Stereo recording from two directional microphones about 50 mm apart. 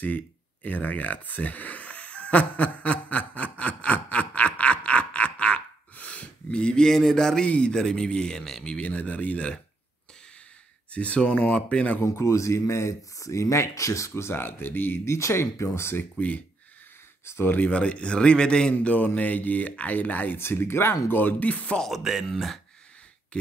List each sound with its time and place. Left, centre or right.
0.7 s a man's voice: left; by 8.7 s centre
8.7 s a man's voice: left
10.9 s a man's voice: left
12.0 s speech: left
14.3 s speech: left
15.0 s speech: left
16.0 s speech: left
17.2 s speech: left
17.6 s a man's voice: left
18.8 s speech: left
20.3 s speech: left
21.1 s speech: left
21.5 s a man's voice: left
22.0 s speech: centre